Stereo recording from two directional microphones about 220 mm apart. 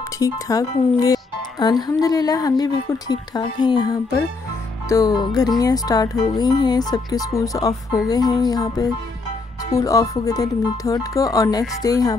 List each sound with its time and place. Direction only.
0.2 s speech: 15° left (ahead or behind)